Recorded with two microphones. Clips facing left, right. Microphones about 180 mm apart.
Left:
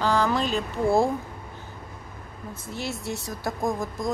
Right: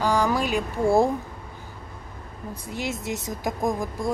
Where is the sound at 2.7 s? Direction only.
15° right (ahead or behind).